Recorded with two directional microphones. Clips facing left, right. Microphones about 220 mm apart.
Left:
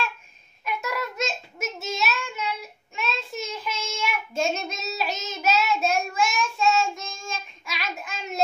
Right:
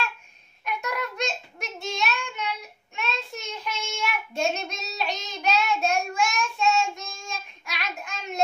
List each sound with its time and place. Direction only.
0.7 s child singing: 5° left (ahead or behind)